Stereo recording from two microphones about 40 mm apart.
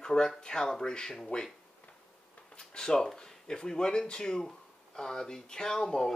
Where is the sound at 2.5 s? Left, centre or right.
Centre.